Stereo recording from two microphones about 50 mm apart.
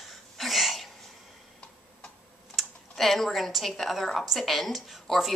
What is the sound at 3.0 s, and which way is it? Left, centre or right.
A woman's voice, centre.